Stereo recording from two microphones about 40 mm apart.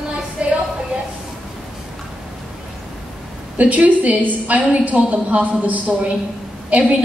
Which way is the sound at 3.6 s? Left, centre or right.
Right.